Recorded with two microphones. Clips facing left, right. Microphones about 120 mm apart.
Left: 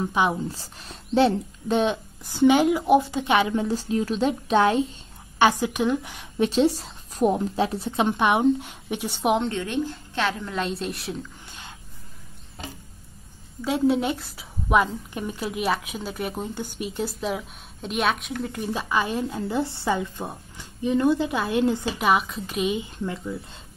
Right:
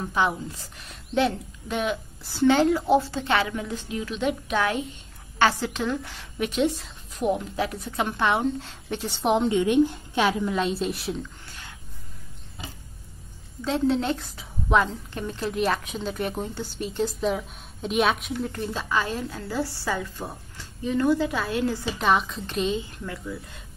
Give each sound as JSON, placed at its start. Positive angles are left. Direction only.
{"t": 0.0, "sound": "a woman's voice", "side_deg": 15}
{"t": 0.5, "sound": "speech", "side_deg": 30}
{"t": 2.2, "sound": "a woman's voice", "side_deg": 15}
{"t": 5.4, "sound": "a woman's voice", "side_deg": 15}
{"t": 6.3, "sound": "a woman's voice", "side_deg": 30}
{"t": 9.4, "sound": "a woman's voice", "side_deg": -15}
{"t": 10.6, "sound": "a woman's voice", "side_deg": 0}
{"t": 11.4, "sound": "a sound", "side_deg": 20}
{"t": 13.6, "sound": "a woman's voice", "side_deg": 10}
{"t": 21.9, "sound": "a woman's voice", "side_deg": 10}